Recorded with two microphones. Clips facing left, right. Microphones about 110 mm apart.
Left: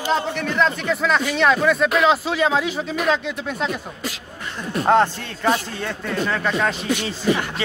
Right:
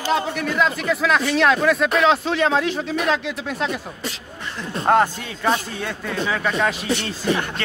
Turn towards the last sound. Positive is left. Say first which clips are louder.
# left 1 dB
turn(degrees=0)  # may be behind; listen again after turning